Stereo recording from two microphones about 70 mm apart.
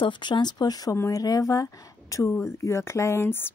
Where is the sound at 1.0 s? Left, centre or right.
Left.